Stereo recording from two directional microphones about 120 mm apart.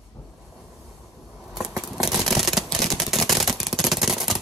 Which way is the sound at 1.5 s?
5° right (ahead or behind).